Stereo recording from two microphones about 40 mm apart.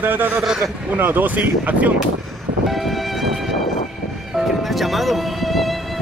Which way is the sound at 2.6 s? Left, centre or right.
Centre.